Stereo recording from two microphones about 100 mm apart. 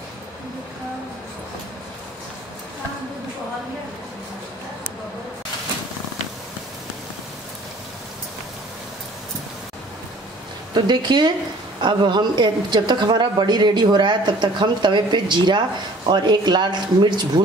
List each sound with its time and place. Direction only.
10.7 s a woman's voice: 45° right (ahead or behind)